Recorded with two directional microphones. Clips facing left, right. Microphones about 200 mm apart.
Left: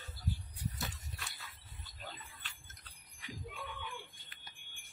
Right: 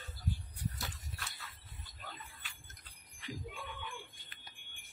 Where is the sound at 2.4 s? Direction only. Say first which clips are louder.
Even; 10° right (ahead or behind).